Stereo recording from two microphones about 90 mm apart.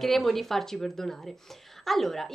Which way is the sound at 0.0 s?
Centre (ahead or behind).